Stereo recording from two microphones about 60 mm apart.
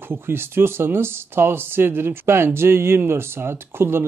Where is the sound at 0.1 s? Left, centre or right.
Right.